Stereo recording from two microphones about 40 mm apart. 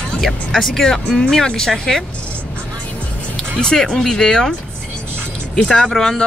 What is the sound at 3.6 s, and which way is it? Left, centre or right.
Speech, centre.